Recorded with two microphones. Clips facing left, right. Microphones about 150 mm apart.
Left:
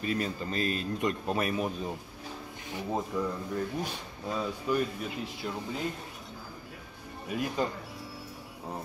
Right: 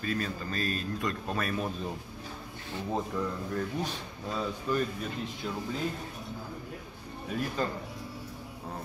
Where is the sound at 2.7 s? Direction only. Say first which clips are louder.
Even; 10° left (ahead or behind).